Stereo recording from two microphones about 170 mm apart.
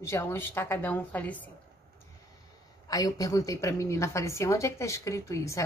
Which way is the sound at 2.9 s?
20° left (ahead or behind).